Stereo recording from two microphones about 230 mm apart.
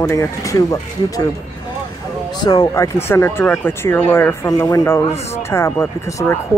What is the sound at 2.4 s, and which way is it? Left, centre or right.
Speech, centre.